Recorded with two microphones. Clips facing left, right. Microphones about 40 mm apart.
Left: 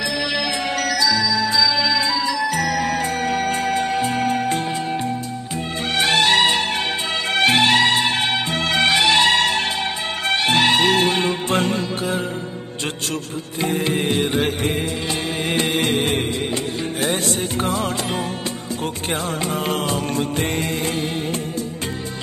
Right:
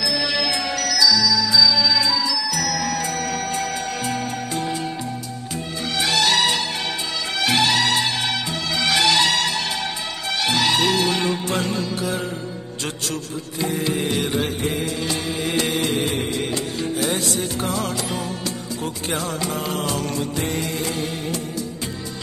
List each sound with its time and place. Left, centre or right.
0.2 s music: centre
0.7 s music: left
5.9 s music: left
8.9 s music: left
13.6 s music: left